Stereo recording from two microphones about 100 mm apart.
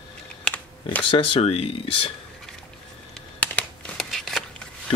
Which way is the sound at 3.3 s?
15° left (ahead or behind).